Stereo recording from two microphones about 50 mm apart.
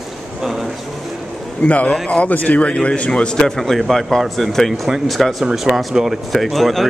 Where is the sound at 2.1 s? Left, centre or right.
Left.